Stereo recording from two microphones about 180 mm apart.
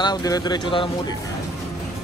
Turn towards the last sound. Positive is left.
turn(degrees=25)  # may be behind; listen again after turning